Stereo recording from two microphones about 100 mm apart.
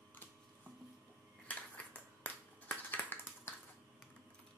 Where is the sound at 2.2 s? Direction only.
15° left (ahead or behind).